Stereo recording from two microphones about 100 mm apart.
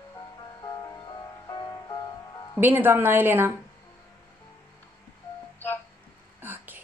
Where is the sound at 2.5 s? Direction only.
20° right (ahead or behind).